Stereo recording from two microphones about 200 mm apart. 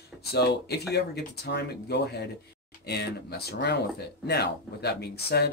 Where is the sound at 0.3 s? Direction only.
55° left (ahead or behind).